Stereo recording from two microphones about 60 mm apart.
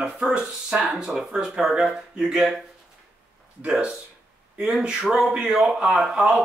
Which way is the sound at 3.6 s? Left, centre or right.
Centre.